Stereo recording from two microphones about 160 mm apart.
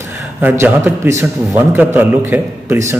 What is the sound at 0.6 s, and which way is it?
A man's voice, 15° right (ahead or behind).